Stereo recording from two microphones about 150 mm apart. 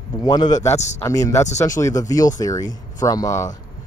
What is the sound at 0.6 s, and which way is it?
Speech, 50° left (ahead or behind).